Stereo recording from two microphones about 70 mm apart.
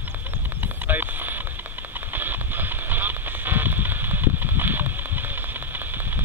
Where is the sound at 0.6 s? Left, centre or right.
Right.